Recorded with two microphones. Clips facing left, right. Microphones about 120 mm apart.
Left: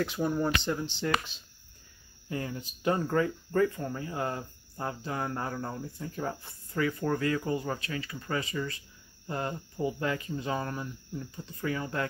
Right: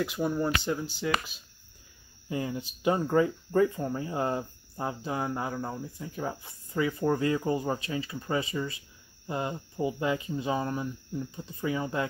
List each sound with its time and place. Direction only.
0.0 s speech: 5° right (ahead or behind)
2.2 s speech: 20° right (ahead or behind)